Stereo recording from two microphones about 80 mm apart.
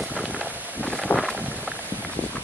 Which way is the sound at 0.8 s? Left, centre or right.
Centre.